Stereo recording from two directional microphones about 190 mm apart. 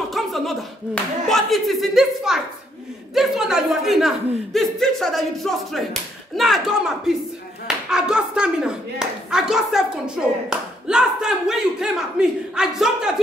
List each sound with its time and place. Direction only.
0.1 s speech: centre (ahead or behind)